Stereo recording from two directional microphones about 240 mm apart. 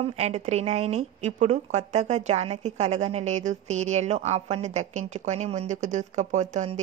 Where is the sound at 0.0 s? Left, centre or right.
Right.